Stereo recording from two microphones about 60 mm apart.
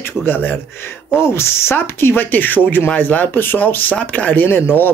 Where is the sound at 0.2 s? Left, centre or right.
Left.